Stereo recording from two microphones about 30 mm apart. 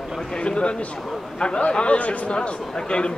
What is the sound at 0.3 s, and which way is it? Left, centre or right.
A man's voice, left.